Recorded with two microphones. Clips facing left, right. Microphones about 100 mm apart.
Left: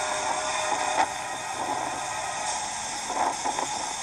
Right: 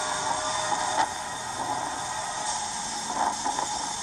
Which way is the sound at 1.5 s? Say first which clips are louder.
Left 1 dB; 15° right (ahead or behind).